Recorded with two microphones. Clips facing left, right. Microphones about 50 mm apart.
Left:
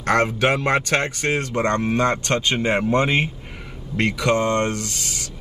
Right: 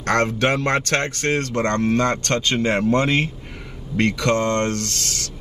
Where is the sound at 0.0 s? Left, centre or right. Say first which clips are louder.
Left 1 dB; centre.